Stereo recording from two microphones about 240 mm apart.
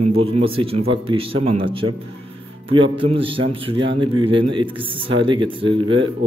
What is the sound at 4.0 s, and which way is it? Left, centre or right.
A man's voice, right.